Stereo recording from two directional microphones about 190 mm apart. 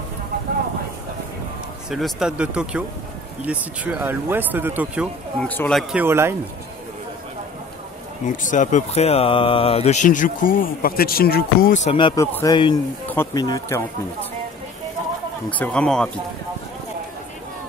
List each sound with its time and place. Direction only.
1.9 s speech: centre (ahead or behind)
5.4 s speech: 5° left (ahead or behind); by 6.3 s 10° right (ahead or behind)
8.3 s speech: 45° left (ahead or behind); by 12.3 s 25° left (ahead or behind)
12.3 s speech: 15° left (ahead or behind)
15.5 s speech: 5° left (ahead or behind)